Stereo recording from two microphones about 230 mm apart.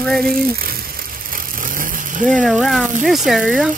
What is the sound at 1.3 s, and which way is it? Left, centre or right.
Vehicle, right.